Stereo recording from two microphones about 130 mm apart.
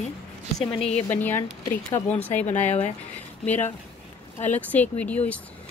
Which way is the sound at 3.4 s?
15° left (ahead or behind).